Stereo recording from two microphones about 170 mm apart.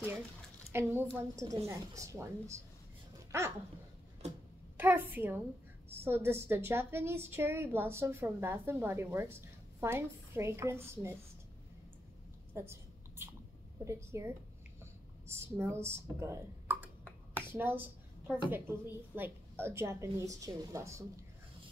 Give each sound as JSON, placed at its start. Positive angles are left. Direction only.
{"t": 0.7, "sound": "a child's voice", "side_deg": -15}
{"t": 4.7, "sound": "a woman's voice", "side_deg": -10}
{"t": 13.2, "sound": "a sound", "side_deg": -15}
{"t": 13.8, "sound": "a woman's voice", "side_deg": -15}
{"t": 14.8, "sound": "a sound", "side_deg": -15}
{"t": 17.5, "sound": "a woman's voice", "side_deg": -10}